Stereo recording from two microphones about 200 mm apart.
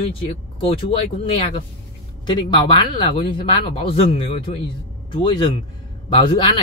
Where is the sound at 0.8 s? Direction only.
25° left (ahead or behind).